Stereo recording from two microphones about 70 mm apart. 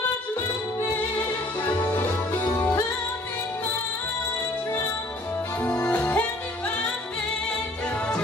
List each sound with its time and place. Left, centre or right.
5.7 s music: left